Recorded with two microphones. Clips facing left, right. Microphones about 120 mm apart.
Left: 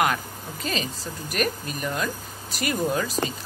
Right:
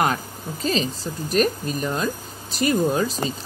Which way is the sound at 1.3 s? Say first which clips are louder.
Right 6 dB; 30° right (ahead or behind).